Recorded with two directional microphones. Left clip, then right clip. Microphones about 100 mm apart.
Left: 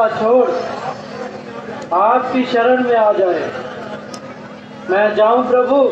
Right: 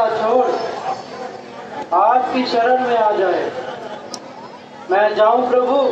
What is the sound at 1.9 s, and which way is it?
A man's voice, 35° left (ahead or behind).